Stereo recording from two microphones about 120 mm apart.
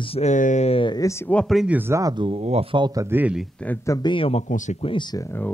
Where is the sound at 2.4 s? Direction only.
60° right (ahead or behind).